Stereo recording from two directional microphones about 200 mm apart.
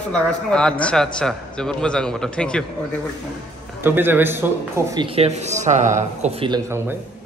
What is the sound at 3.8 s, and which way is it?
A man's voice, 10° right (ahead or behind).